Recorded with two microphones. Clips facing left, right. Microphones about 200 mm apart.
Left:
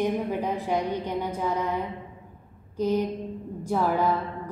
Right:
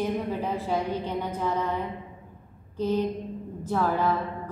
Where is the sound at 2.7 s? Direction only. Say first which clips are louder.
Left 1 dB; 10° left (ahead or behind).